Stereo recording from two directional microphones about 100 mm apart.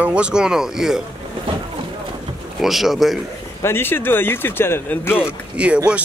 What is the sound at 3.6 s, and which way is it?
Speech, 25° left (ahead or behind).